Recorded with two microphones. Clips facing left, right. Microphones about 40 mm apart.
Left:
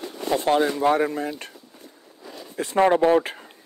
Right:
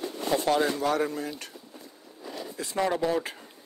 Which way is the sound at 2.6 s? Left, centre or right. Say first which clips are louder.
Left 9 dB; left.